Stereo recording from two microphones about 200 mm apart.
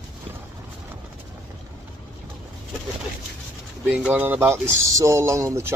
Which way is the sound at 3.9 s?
5° right (ahead or behind).